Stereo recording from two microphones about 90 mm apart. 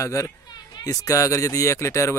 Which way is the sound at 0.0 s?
35° left (ahead or behind).